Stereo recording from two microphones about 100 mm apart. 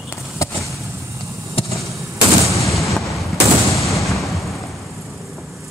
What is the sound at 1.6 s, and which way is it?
Basketball bounce, 70° left (ahead or behind).